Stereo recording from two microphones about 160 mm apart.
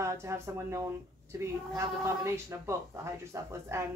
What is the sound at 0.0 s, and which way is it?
Speech, 20° right (ahead or behind).